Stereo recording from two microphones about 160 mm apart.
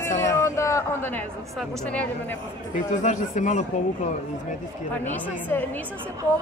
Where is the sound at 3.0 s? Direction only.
50° left (ahead or behind).